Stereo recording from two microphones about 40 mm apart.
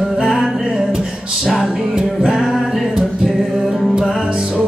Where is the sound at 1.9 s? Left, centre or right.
Centre.